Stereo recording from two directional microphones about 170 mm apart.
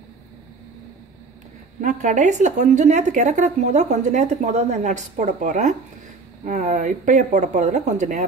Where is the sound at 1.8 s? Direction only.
45° right (ahead or behind).